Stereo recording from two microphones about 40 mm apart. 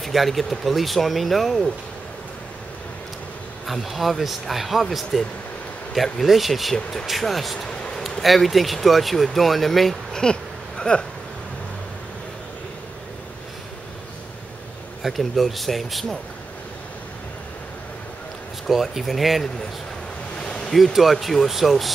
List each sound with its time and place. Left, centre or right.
0.0 s speech: centre
3.6 s speech: centre
10.2 s speech: centre
10.8 s a sound: left
15.0 s speech: centre
18.7 s speech: centre
20.3 s a sound: left
20.7 s speech: centre